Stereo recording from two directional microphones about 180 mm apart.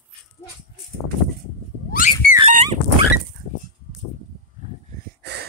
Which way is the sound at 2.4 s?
35° right (ahead or behind).